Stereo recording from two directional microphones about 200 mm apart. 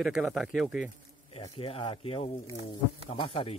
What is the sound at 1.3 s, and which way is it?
Speech, 30° left (ahead or behind).